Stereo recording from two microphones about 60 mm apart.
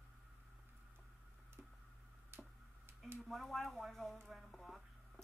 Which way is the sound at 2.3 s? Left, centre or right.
Right.